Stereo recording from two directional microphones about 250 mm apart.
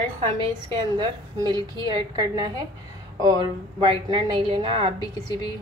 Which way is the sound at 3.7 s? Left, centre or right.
Right.